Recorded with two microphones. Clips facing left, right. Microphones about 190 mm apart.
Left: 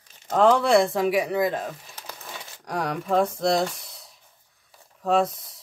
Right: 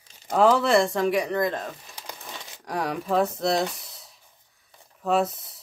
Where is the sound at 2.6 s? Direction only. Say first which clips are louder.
Even; centre (ahead or behind).